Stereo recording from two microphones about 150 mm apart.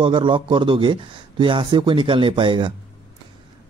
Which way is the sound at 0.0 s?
35° right (ahead or behind).